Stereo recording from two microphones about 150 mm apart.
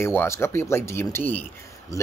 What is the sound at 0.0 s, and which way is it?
Speech, 15° left (ahead or behind).